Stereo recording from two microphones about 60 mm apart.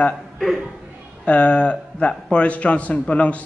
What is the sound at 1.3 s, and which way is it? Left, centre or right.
A man's voice, left.